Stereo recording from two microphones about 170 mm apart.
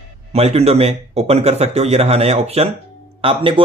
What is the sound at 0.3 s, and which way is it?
Speech, 35° right (ahead or behind).